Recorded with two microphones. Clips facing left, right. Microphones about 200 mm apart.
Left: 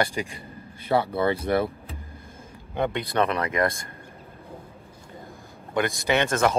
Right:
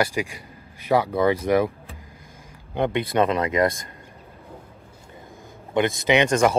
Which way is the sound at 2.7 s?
15° right (ahead or behind).